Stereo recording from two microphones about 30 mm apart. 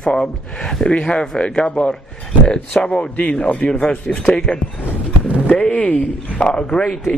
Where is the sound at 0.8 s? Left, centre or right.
Left.